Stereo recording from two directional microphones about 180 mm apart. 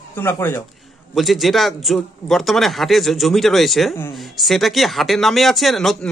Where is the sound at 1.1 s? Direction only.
Centre (ahead or behind).